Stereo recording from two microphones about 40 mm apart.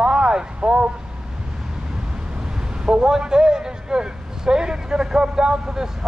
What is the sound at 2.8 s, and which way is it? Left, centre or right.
A man's voice, centre.